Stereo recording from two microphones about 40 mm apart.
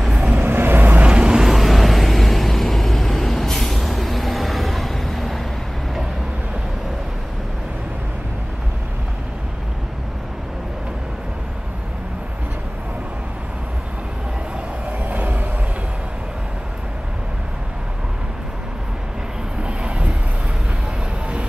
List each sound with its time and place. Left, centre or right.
0.4 s vehicle: right
1.0 s vehicle: right
1.4 s vehicle: centre
19.6 s vehicle: right